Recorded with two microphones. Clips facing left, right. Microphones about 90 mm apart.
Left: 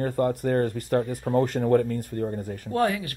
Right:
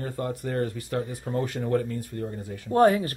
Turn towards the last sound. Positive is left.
turn(degrees=-30)  # may be behind; listen again after turning